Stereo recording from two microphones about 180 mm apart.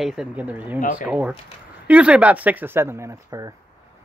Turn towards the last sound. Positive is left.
turn(degrees=-20)  # may be behind; listen again after turning